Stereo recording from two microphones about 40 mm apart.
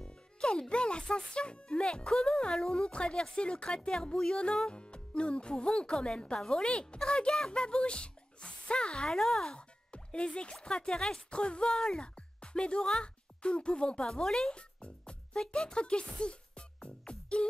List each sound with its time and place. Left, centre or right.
0.0 s speech: left
9.6 s speech: left
11.2 s speech: left
14.2 s speech: centre
14.5 s music: left
15.4 s speech: left